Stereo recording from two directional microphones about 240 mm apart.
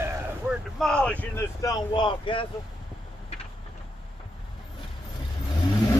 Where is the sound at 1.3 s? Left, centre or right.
Centre.